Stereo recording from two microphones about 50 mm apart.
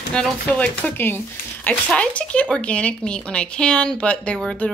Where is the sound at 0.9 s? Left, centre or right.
Left.